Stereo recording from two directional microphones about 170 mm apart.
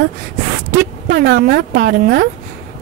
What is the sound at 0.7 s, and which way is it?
Speech, 60° right (ahead or behind).